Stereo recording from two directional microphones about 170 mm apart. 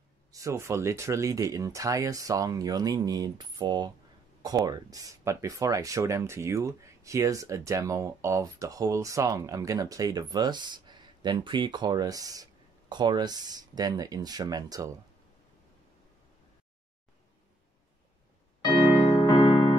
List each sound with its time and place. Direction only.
0.3 s speech: 20° right (ahead or behind)
18.6 s keyboard: 25° left (ahead or behind)